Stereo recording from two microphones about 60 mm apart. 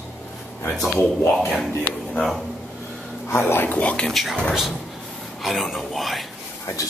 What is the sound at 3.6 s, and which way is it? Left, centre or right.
Speech, left.